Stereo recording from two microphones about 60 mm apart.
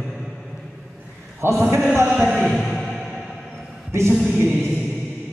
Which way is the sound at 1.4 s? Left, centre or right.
Right.